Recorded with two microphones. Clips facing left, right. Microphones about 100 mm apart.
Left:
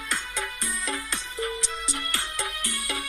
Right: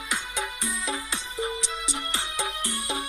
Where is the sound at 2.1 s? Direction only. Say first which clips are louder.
Right 1 dB; 20° right (ahead or behind).